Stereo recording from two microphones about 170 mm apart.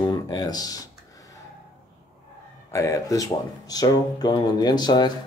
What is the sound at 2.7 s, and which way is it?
Speech, 20° left (ahead or behind).